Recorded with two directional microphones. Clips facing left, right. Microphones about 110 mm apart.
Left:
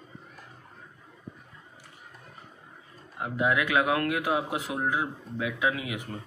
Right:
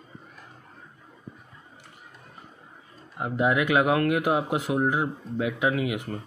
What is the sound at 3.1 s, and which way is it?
Speech, 25° right (ahead or behind).